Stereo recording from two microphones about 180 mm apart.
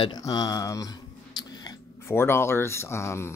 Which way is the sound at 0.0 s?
20° left (ahead or behind).